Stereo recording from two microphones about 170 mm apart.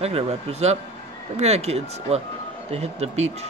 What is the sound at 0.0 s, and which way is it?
Speech, 35° right (ahead or behind).